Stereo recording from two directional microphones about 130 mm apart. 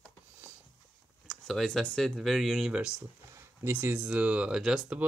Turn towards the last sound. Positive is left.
turn(degrees=-5)  # may be behind; listen again after turning